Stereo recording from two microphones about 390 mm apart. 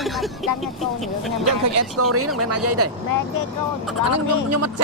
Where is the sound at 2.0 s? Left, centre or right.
Right.